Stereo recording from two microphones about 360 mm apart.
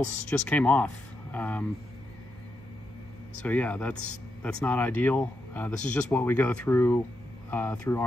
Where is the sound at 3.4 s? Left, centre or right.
Centre.